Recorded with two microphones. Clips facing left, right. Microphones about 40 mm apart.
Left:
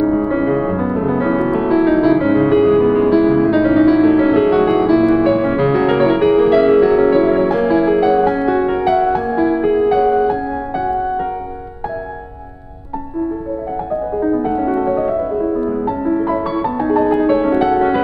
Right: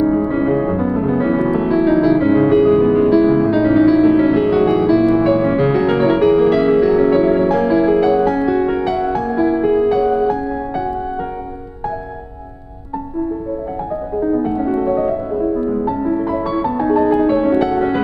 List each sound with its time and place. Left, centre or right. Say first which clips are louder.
0.0 s music: even; centre
14.2 s music: even; centre